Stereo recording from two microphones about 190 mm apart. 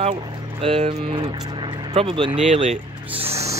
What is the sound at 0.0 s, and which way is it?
Speech, 35° right (ahead or behind).